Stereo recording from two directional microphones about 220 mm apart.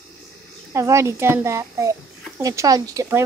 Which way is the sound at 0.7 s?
15° right (ahead or behind).